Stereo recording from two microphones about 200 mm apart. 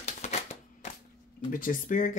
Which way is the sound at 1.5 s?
40° left (ahead or behind).